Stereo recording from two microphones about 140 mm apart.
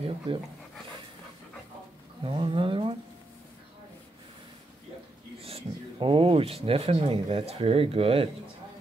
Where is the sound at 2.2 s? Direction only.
40° right (ahead or behind).